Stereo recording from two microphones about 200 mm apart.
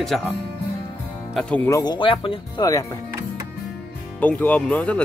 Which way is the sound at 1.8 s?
25° left (ahead or behind).